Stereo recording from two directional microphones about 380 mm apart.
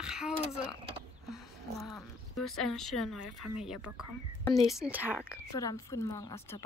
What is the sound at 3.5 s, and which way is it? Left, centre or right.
A woman's voice, centre.